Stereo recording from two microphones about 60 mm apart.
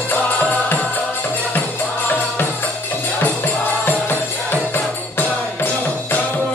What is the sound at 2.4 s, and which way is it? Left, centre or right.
Music, left.